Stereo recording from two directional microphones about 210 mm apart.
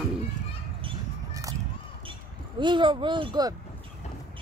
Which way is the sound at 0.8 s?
15° right (ahead or behind).